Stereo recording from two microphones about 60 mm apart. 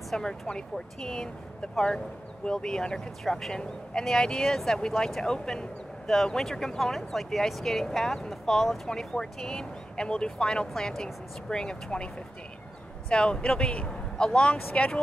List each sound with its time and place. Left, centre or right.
0.1 s speech: centre
2.4 s speech: centre
13.1 s speech: centre